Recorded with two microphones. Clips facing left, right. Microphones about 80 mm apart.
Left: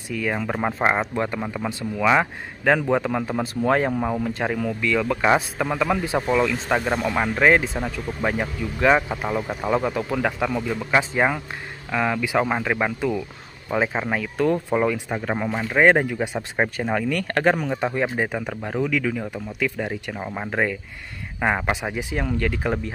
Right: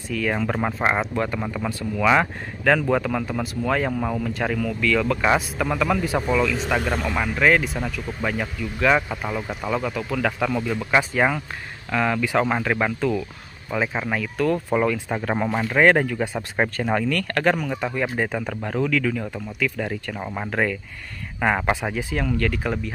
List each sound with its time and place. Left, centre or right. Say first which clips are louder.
0.1 s speech: right 1 dB; centre; by 4.0 s left
4.0 s speech: left 1 dB; centre
9.7 s speech: left 3 dB; left
14.7 s speech: even; centre
15.4 s speech: right 2 dB; centre
15.7 s speech: left 1 dB; centre
17.0 s speech: left 1 dB; left
21.5 s speech: right 2 dB; centre
21.9 s speech: right 1 dB; left